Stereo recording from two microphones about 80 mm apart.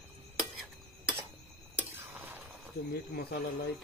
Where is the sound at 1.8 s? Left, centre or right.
Right.